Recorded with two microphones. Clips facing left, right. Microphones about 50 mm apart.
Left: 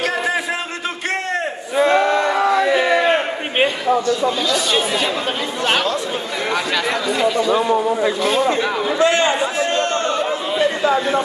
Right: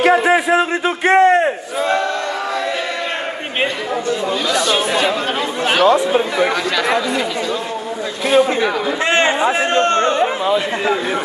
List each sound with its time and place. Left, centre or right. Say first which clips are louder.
0.0 s a man's voice: right 7 dB; right
4.5 s speech: right 2 dB; centre
9.0 s a man's voice: even; right
9.4 s chatter: right 4 dB; right